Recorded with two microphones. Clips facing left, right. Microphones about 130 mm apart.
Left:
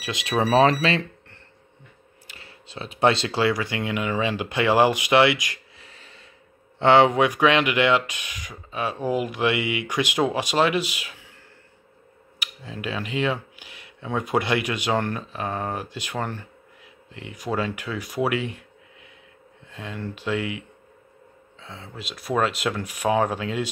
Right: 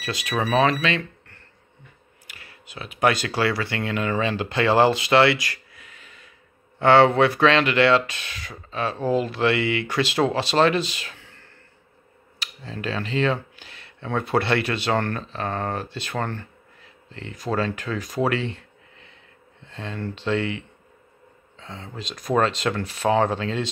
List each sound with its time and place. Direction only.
0.0 s speech: 20° left (ahead or behind)
5.8 s a sound: 35° left (ahead or behind)
6.8 s speech: 20° left (ahead or behind)